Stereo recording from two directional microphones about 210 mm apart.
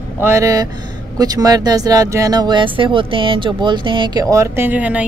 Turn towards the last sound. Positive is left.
turn(degrees=-5)  # may be behind; listen again after turning